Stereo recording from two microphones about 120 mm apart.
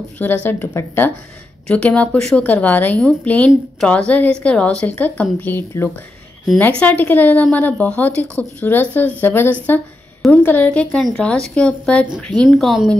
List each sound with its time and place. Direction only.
0.2 s a woman's voice: 15° left (ahead or behind)
12.4 s speech: centre (ahead or behind)